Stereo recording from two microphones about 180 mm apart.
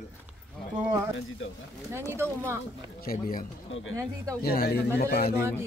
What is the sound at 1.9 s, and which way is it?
Speech, 15° right (ahead or behind).